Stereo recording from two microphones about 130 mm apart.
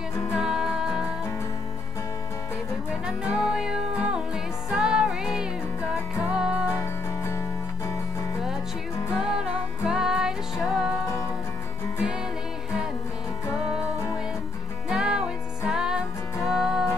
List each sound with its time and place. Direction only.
0.4 s music: 5° right (ahead or behind)
3.1 s music: 5° right (ahead or behind)
6.8 s music: 20° left (ahead or behind)
9.1 s music: 5° right (ahead or behind)
14.9 s music: 5° right (ahead or behind)